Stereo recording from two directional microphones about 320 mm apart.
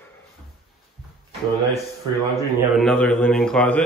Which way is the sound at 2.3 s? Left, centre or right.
Centre.